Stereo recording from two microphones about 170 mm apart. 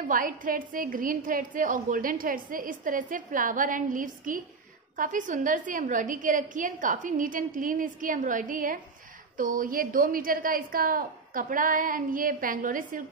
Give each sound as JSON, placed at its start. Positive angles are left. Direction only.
{"t": 0.1, "sound": "a woman's voice", "side_deg": -55}